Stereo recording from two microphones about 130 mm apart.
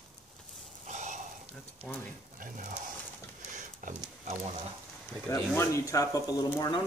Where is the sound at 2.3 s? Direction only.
90° right.